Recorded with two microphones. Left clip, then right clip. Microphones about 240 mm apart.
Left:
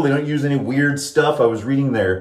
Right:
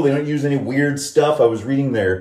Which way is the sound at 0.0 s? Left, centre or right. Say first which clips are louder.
Right 1 dB; centre.